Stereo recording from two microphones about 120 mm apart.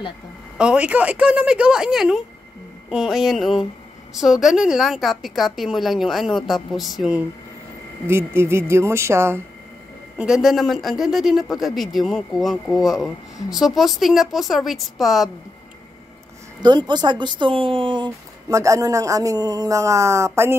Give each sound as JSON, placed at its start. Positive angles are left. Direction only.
{"t": 0.6, "sound": "a woman's voice", "side_deg": -10}
{"t": 8.1, "sound": "speech", "side_deg": -20}
{"t": 10.1, "sound": "a man's voice", "side_deg": -5}
{"t": 16.6, "sound": "speech", "side_deg": -35}
{"t": 18.5, "sound": "speech", "side_deg": -25}